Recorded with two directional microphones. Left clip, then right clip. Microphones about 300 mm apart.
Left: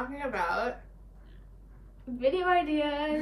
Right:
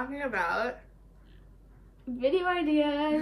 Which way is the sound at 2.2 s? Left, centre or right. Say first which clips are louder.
Left 1 dB; centre.